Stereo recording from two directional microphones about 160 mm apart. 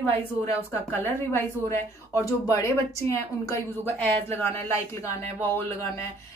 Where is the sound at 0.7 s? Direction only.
15° left (ahead or behind).